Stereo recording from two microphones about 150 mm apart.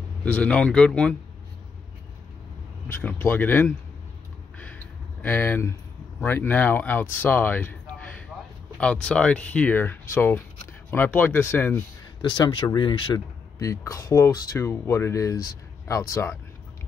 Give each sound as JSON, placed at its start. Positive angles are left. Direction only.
{"t": 0.2, "sound": "speech", "side_deg": 10}
{"t": 2.9, "sound": "speech", "side_deg": 10}
{"t": 5.2, "sound": "speech", "side_deg": 15}
{"t": 12.2, "sound": "speech", "side_deg": 30}